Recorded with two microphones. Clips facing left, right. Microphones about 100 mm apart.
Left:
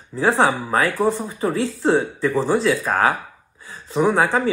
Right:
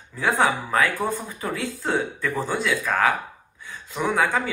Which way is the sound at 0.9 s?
20° left (ahead or behind).